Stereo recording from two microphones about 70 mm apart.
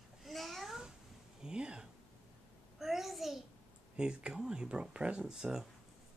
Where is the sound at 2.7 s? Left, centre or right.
Centre.